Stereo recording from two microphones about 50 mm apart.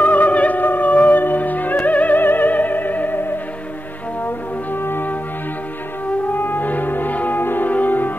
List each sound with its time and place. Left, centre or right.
0.0 s music: left
4.8 s music: left